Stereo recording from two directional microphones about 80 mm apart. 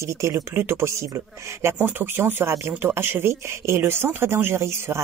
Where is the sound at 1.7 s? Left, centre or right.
Right.